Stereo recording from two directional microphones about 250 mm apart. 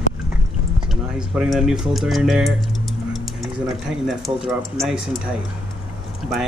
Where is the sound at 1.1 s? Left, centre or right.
Centre.